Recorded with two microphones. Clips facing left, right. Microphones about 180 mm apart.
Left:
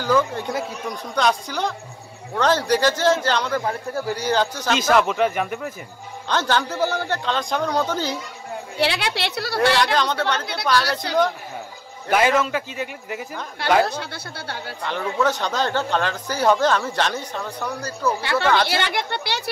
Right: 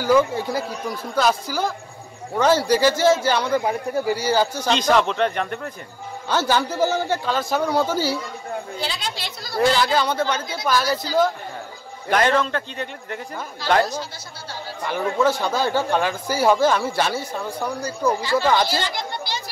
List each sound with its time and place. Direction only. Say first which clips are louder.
0.0 s a man's voice: right 3 dB; 10° right (ahead or behind)
4.6 s speech: left 2 dB; 5° left (ahead or behind)
6.2 s a man's voice: right 1 dB; 10° right (ahead or behind)
8.7 s a woman's voice: left 6 dB; 70° left (ahead or behind)
9.9 s a man's voice: right 1 dB; 10° right (ahead or behind)
10.4 s a woman's voice: even; 70° left (ahead or behind)
12.1 s a man's voice: even; 5° left (ahead or behind)
13.8 s speech: left 1 dB; 60° left (ahead or behind)
14.8 s a man's voice: right 2 dB; 10° right (ahead or behind)
18.2 s speech: left 1 dB; 65° left (ahead or behind)